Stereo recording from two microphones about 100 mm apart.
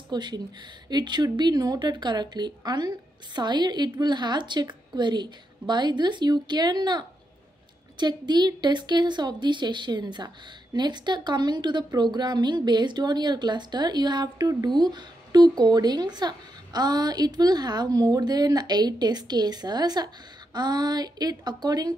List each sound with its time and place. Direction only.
0.1 s a woman's voice: 45° right (ahead or behind)